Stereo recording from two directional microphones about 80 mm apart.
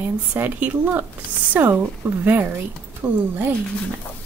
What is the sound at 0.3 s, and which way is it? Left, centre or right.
Speech, right.